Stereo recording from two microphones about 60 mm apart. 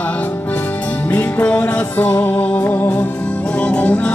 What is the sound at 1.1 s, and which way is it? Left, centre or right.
Music, left.